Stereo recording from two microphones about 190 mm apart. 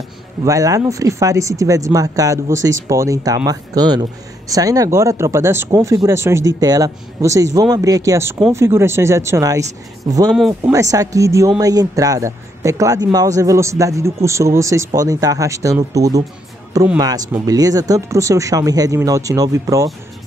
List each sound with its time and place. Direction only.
0.5 s speech: 15° right (ahead or behind)
17.0 s speech: 20° right (ahead or behind)